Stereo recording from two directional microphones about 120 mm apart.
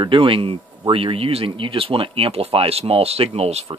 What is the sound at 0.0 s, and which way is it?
Speech, 45° right (ahead or behind).